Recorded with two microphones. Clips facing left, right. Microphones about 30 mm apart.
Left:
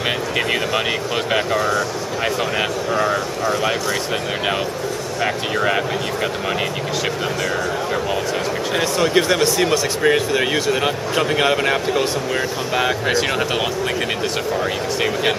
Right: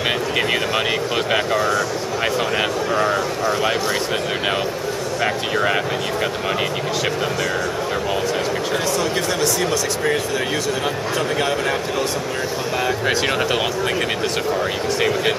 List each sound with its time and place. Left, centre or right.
1.3 s speech: centre
5.2 s speech: centre
8.7 s speech: left
13.0 s speech: centre
15.0 s speech: centre